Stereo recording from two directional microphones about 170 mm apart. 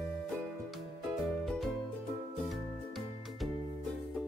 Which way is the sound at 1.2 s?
Centre (ahead or behind).